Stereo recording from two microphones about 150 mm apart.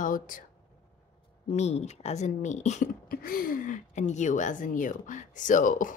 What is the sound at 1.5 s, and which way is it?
Speech, 45° left (ahead or behind).